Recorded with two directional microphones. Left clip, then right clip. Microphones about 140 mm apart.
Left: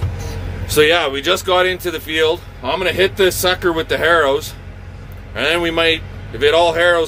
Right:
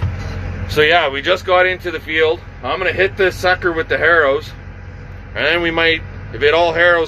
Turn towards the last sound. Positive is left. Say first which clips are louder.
# even
turn(degrees=55)  # may be behind; listen again after turning